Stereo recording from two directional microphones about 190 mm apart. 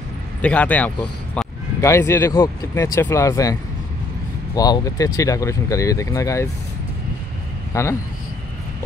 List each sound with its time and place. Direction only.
0.4 s speech: 5° left (ahead or behind)
4.6 s speech: 20° left (ahead or behind)
7.7 s speech: 15° left (ahead or behind)